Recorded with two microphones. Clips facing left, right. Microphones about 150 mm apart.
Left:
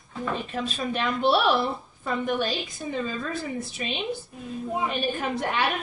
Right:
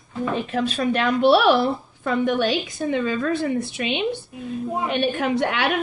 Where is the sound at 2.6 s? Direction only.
85° right.